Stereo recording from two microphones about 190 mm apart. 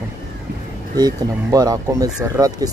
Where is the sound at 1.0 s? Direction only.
20° right (ahead or behind).